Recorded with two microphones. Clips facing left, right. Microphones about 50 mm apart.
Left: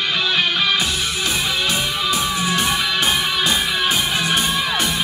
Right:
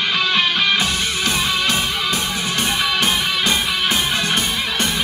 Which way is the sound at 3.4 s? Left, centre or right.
Right.